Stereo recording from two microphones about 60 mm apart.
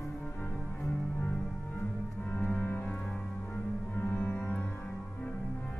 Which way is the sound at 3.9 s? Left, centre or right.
Left.